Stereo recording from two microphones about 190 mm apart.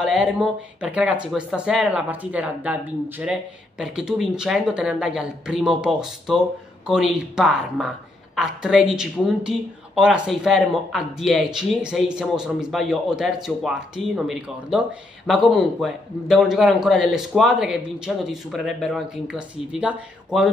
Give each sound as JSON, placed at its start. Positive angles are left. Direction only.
{"t": 0.0, "sound": "speech", "side_deg": -5}